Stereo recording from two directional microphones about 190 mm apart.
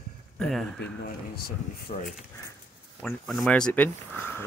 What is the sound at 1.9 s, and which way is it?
Speech, 35° left (ahead or behind).